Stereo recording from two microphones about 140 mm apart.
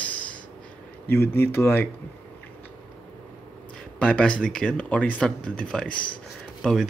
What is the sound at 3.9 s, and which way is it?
Speech, 10° left (ahead or behind).